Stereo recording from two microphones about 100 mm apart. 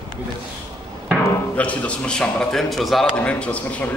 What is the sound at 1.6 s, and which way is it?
A man's voice, 15° left (ahead or behind).